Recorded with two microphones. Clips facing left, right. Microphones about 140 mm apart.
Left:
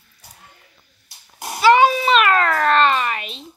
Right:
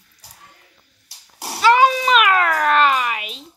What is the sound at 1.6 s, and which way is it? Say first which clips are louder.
Speech: left 1 dB; 5° left (ahead or behind).